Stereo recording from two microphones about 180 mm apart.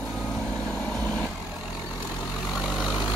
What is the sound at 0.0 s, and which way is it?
Vehicle, centre (ahead or behind).